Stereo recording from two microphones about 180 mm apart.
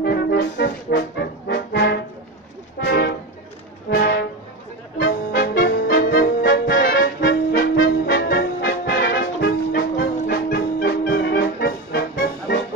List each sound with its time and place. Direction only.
0.0 s brass instrument: 65° left (ahead or behind)
2.8 s toot: 65° left (ahead or behind)
3.9 s music: 70° left (ahead or behind)
5.4 s music: 55° left (ahead or behind)
6.0 s music: 65° left (ahead or behind)